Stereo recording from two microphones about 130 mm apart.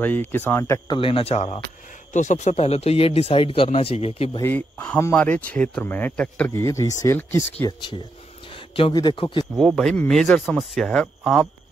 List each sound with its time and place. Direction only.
0.0 s speech: 15° left (ahead or behind)
0.8 s speech: 40° left (ahead or behind)
2.1 s speech: 65° left (ahead or behind); by 4.4 s 50° left (ahead or behind)
4.4 s speech: 15° left (ahead or behind)
6.5 s speech: 25° left (ahead or behind)
8.5 s a sound: 45° left (ahead or behind)
8.9 s a man's voice: 35° left (ahead or behind)
9.6 s speech: centre (ahead or behind)